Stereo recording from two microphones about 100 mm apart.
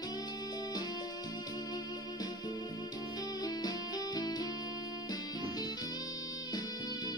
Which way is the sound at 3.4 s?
40° left (ahead or behind).